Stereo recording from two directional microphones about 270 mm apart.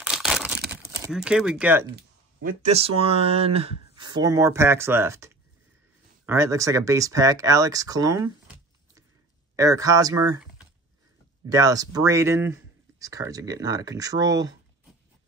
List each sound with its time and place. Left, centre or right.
0.0 s crumpling: centre
0.7 s speech: centre
2.0 s speech: right; by 8.2 s centre
9.6 s speech: centre
11.4 s speech: centre